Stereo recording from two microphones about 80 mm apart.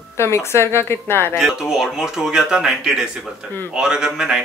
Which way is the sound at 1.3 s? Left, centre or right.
Centre.